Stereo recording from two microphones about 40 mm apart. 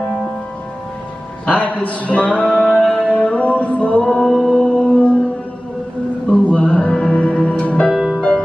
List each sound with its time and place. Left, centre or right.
1.5 s music: left
6.2 s music: left
7.9 s music: centre